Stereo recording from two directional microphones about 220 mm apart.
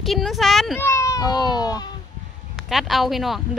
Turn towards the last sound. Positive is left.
turn(degrees=0)  # may be behind; listen again after turning